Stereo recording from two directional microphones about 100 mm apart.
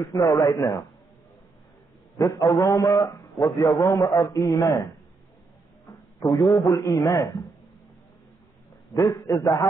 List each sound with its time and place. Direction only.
0.0 s a man's voice: 35° left (ahead or behind)
2.1 s a man's voice: 35° left (ahead or behind)
5.9 s a man's voice: 35° left (ahead or behind)
8.9 s a man's voice: 35° left (ahead or behind)